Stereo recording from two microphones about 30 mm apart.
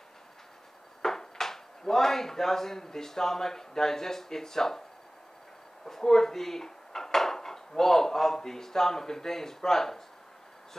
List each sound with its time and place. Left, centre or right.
1.0 s speech: centre
5.9 s dishes: centre